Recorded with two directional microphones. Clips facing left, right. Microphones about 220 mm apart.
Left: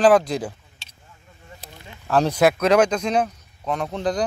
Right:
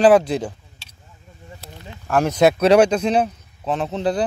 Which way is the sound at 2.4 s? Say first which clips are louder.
Right 4 dB; 30° right (ahead or behind).